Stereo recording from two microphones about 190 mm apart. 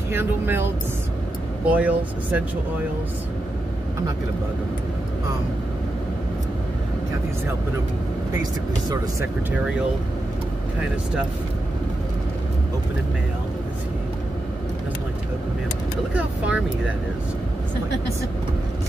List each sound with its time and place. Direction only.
0.1 s speech: 10° right (ahead or behind)
1.7 s speech: 10° right (ahead or behind)
8.4 s speech: 20° right (ahead or behind)
16.1 s speech: 5° right (ahead or behind)